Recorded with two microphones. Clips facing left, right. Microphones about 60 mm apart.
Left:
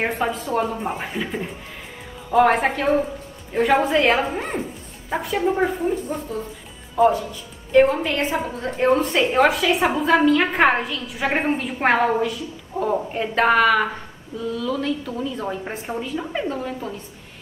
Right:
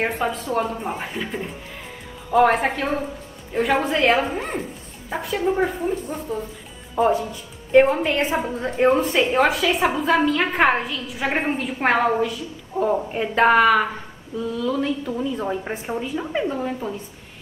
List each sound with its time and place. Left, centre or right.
0.0 s a woman's voice: centre
7.0 s speech: right
7.8 s a woman's voice: centre